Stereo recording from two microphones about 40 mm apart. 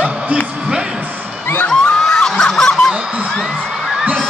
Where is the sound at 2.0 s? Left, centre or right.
Centre.